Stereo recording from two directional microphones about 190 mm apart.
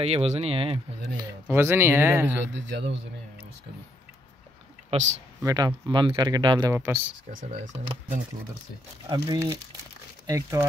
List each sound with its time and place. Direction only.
0.0 s speech: 30° right (ahead or behind)
1.5 s speech: 10° right (ahead or behind)
2.5 s a man's voice: 65° right (ahead or behind)
4.9 s speech: 30° right (ahead or behind)
5.4 s speech: 20° right (ahead or behind)
9.1 s speech: 20° right (ahead or behind)